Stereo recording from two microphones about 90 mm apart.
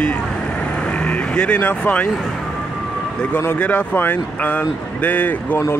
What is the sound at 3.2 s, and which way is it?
Speech, 20° left (ahead or behind).